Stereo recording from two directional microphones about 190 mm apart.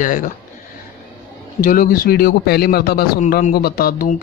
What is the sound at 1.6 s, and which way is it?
A man's voice, 45° left (ahead or behind).